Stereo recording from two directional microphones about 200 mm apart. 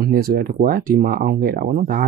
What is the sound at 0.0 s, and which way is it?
Speech, 50° right (ahead or behind).